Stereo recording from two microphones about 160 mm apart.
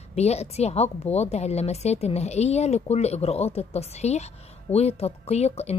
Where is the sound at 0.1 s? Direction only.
40° left (ahead or behind).